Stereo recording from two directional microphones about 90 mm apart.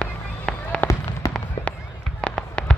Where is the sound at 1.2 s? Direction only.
40° left (ahead or behind).